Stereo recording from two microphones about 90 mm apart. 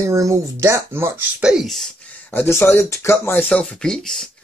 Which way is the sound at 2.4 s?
25° left (ahead or behind).